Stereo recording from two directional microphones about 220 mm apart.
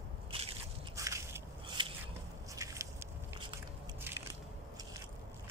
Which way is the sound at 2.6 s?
15° right (ahead or behind).